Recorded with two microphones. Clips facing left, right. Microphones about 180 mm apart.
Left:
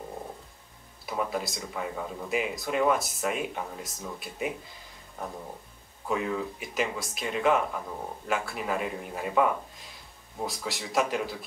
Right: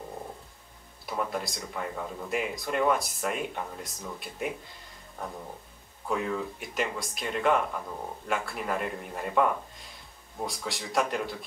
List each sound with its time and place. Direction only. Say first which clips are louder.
1.0 s speech: left 1 dB; 5° left (ahead or behind)
6.0 s speech: left 1 dB; centre (ahead or behind)